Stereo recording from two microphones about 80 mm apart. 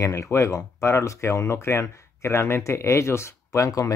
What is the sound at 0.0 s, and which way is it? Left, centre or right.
Speech, left.